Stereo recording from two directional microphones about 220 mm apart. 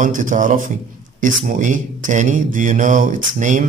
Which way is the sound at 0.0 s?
35° right (ahead or behind).